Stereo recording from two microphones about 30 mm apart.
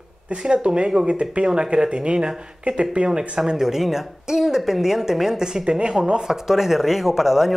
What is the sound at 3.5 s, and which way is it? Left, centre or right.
Speech, centre.